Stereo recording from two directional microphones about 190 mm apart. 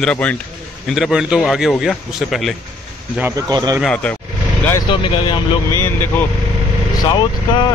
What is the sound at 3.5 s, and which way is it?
Speech, 20° right (ahead or behind).